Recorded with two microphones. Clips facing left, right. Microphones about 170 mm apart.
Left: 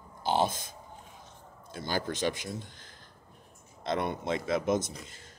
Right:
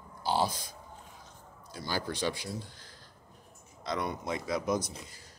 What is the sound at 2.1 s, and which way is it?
Speech, 20° left (ahead or behind).